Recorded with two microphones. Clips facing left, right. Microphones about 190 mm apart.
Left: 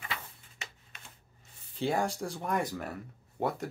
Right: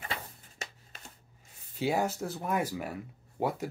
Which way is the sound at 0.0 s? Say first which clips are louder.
Right 2 dB; 40° right (ahead or behind).